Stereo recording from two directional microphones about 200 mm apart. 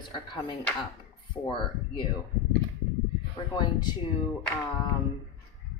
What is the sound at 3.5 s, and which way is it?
Speech, 20° left (ahead or behind).